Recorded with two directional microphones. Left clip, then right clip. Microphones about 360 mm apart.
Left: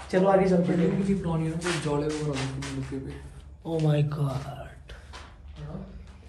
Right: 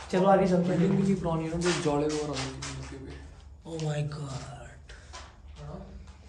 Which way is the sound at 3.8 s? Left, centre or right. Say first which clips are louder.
Left 7 dB; centre.